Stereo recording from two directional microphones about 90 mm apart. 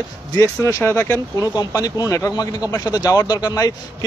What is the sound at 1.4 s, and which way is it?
Speech, 45° left (ahead or behind).